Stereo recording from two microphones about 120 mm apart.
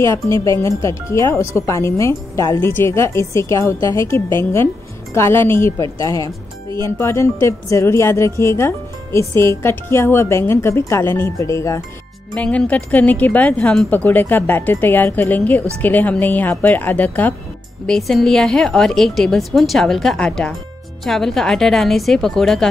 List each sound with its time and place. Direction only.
0.3 s speech: 25° left (ahead or behind)
12.4 s speech: 10° left (ahead or behind)
17.8 s a woman's voice: 5° left (ahead or behind)